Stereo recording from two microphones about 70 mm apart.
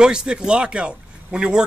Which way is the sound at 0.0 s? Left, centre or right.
Centre.